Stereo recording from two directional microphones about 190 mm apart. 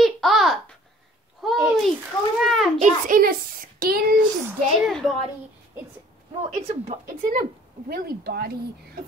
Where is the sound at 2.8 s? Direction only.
50° right (ahead or behind).